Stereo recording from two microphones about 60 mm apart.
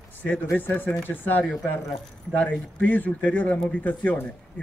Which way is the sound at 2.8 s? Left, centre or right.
Left.